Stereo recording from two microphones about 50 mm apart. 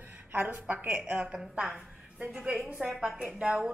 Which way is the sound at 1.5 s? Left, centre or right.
Right.